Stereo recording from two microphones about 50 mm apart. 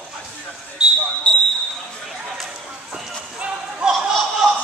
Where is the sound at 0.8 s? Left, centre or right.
Centre.